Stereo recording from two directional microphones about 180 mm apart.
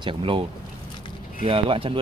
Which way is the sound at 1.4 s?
30° right (ahead or behind).